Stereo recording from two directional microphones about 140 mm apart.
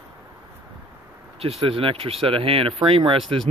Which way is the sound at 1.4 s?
45° right (ahead or behind).